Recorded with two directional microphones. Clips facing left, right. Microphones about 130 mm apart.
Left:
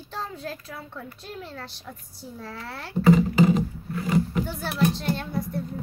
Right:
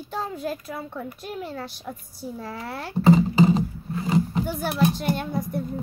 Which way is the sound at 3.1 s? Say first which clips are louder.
Right 1 dB; 25° right (ahead or behind).